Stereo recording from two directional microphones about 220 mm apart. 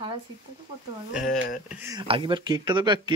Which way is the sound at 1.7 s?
10° right (ahead or behind).